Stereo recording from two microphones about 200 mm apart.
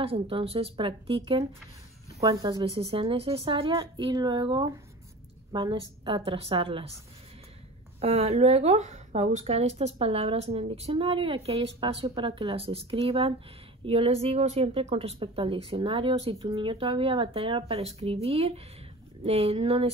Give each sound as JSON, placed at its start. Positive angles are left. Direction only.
{"t": 0.0, "sound": "a woman's voice", "side_deg": -30}
{"t": 8.0, "sound": "a woman's voice", "side_deg": -30}